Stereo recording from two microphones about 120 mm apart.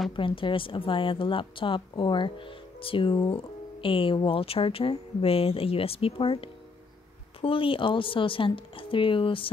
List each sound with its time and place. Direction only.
0.1 s speech: 45° left (ahead or behind)